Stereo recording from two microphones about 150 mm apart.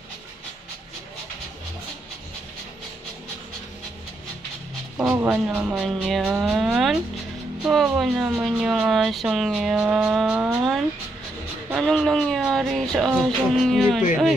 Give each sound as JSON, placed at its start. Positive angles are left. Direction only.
{"t": 4.9, "sound": "speech", "side_deg": -10}
{"t": 11.8, "sound": "speech", "side_deg": 5}